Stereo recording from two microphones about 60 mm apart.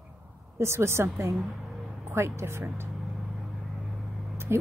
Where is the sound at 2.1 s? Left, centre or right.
Right.